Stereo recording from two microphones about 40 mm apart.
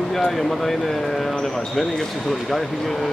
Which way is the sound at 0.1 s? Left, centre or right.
Centre.